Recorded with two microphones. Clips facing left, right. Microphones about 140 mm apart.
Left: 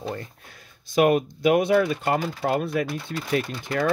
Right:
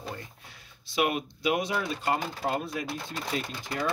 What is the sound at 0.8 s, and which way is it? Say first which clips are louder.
Speech: left 9 dB; 45° left (ahead or behind).